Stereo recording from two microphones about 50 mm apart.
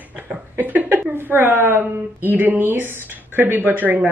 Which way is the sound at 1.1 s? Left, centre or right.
Right.